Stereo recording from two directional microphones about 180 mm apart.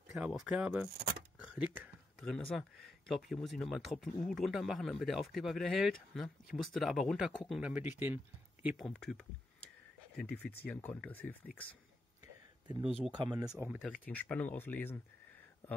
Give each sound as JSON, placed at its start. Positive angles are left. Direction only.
{"t": 0.1, "sound": "speech", "side_deg": -5}
{"t": 8.6, "sound": "speech", "side_deg": 0}
{"t": 12.6, "sound": "speech", "side_deg": -30}
{"t": 13.8, "sound": "speech", "side_deg": 10}